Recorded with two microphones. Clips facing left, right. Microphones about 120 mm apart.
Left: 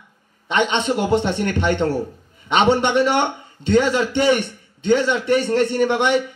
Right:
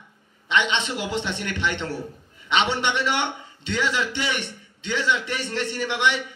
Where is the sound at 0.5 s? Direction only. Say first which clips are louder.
Left 5 dB; 45° left (ahead or behind).